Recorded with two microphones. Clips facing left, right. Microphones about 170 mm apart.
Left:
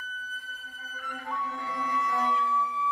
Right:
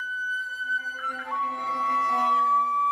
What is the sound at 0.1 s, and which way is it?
Music, 20° left (ahead or behind).